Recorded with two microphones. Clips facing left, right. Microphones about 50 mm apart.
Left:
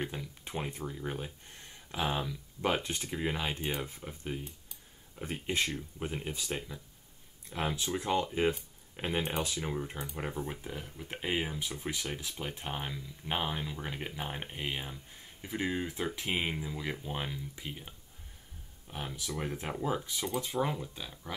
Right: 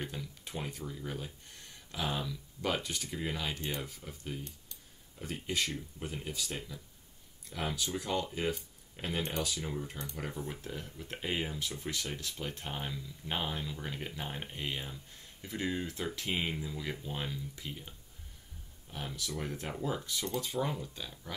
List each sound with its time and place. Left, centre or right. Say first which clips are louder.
0.0 s speech: left 3 dB; centre